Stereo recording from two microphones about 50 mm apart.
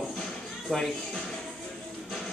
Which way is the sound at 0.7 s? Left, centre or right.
Left.